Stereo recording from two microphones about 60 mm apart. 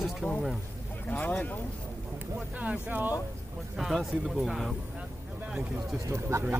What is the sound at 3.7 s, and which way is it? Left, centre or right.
Speech, centre.